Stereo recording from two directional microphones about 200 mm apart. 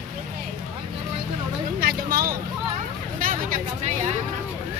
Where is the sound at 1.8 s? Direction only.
45° right (ahead or behind).